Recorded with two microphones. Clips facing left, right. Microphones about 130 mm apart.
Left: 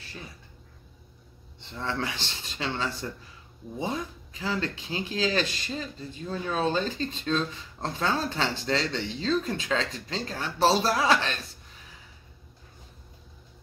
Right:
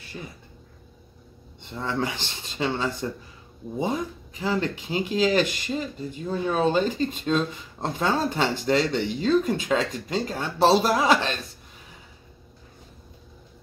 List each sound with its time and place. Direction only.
1.8 s speech: 20° right (ahead or behind)